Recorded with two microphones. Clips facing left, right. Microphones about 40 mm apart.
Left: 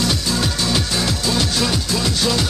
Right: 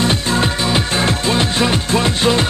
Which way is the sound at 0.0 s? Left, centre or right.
Right.